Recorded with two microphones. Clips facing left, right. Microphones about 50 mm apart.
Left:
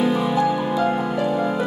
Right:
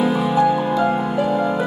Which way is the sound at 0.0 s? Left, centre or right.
Centre.